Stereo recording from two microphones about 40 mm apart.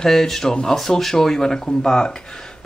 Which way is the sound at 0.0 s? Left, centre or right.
Centre.